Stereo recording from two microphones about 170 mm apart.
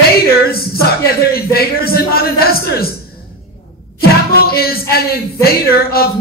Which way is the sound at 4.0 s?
65° left (ahead or behind).